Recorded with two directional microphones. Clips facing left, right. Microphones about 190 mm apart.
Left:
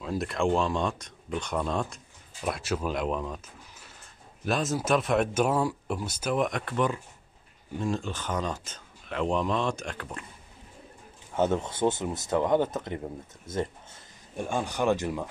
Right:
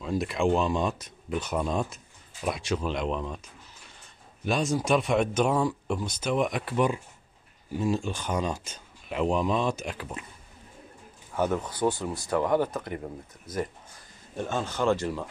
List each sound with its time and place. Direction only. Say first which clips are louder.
0.0 s speech: right 1 dB; centre (ahead or behind)
4.5 s speech: right 1 dB; centre (ahead or behind)
11.3 s speech: left 1 dB; 25° left (ahead or behind)
14.3 s speech: even; 15° left (ahead or behind)